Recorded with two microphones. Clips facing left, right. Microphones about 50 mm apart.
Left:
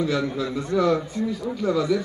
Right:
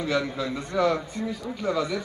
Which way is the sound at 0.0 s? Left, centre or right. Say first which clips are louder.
Left 2 dB; right.